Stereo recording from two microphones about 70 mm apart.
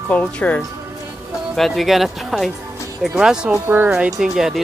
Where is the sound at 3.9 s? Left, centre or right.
Centre.